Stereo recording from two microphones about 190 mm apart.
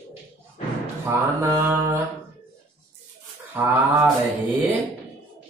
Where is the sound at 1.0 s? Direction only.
15° right (ahead or behind).